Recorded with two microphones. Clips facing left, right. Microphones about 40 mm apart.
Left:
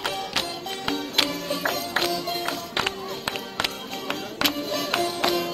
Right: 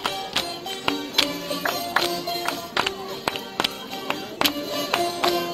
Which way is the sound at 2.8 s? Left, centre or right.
Right.